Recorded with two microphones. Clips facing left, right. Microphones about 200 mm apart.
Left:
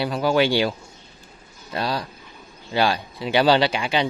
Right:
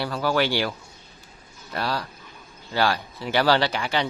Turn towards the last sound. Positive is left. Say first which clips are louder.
# left 3 dB
turn(degrees=15)  # may be behind; listen again after turning